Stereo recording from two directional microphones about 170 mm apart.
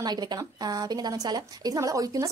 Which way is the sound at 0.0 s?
25° right (ahead or behind).